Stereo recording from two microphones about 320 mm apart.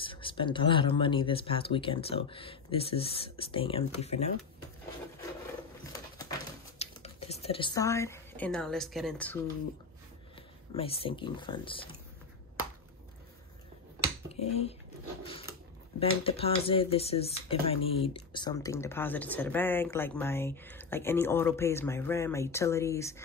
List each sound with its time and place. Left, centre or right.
0.0 s speech: centre
6.8 s speech: centre
10.7 s speech: centre
16.0 s speech: centre